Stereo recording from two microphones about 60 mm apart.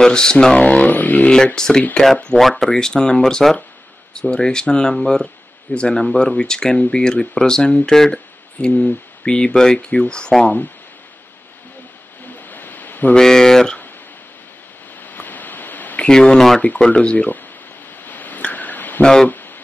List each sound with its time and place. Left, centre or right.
0.0 s speech: centre
0.8 s speech: left
1.3 s speech: centre
10.4 s speech: left
12.4 s a sound: left
13.1 s speech: centre
15.0 s a sound: left
16.1 s speech: centre
18.0 s a sound: left